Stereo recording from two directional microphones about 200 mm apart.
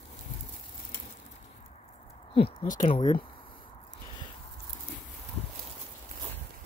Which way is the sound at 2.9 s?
25° left (ahead or behind).